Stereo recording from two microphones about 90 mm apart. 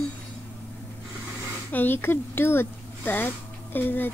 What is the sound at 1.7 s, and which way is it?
Speech, 25° left (ahead or behind).